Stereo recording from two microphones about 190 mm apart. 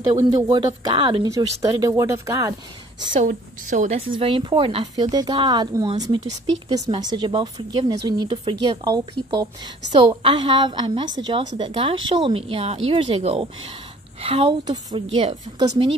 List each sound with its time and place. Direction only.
0.2 s speech: 25° right (ahead or behind)
3.2 s a woman's voice: 40° right (ahead or behind)
4.1 s speech: 25° right (ahead or behind)